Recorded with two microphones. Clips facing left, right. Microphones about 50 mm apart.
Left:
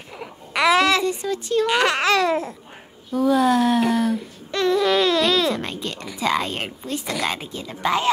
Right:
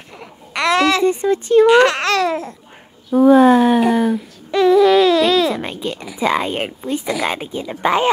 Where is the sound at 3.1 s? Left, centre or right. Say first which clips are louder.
Right 8 dB; right.